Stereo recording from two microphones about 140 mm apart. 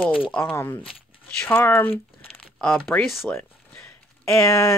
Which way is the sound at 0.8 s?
5° left (ahead or behind).